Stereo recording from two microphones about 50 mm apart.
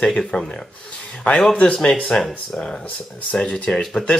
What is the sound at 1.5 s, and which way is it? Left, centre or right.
Speech, left.